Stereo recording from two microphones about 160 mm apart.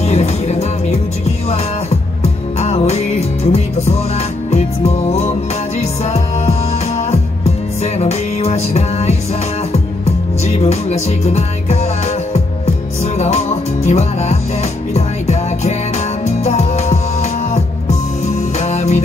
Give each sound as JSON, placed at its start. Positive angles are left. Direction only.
{"t": 0.0, "sound": "music", "side_deg": 45}
{"t": 2.2, "sound": "music", "side_deg": 40}
{"t": 10.4, "sound": "music", "side_deg": 40}
{"t": 13.0, "sound": "music", "side_deg": 45}